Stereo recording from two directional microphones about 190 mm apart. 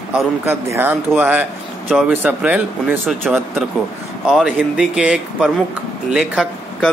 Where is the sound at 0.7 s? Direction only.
10° right (ahead or behind).